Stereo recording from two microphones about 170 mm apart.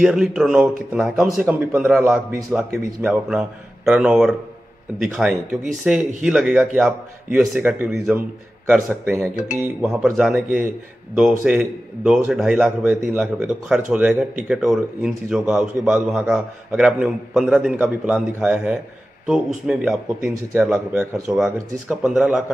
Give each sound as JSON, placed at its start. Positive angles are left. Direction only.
{"t": 0.0, "sound": "a man's voice", "side_deg": 0}
{"t": 9.3, "sound": "speech", "side_deg": 50}
{"t": 9.8, "sound": "a man's voice", "side_deg": 0}